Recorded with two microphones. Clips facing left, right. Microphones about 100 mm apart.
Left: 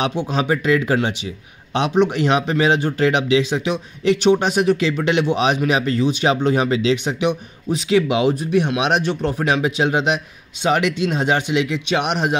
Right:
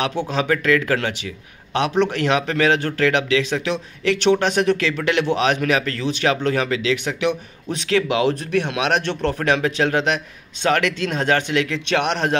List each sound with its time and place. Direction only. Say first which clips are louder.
0.0 s a man's voice: left 1 dB; 15° left (ahead or behind)